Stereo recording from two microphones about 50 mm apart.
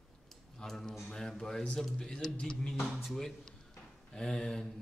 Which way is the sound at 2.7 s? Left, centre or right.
Centre.